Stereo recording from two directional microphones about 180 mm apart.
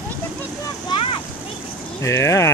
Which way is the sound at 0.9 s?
30° left (ahead or behind).